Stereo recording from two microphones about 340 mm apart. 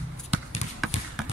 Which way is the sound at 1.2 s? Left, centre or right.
Centre.